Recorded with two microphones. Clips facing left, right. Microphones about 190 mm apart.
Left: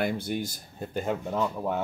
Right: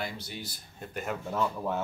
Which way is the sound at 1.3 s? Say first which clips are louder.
Right 1 dB; 15° left (ahead or behind).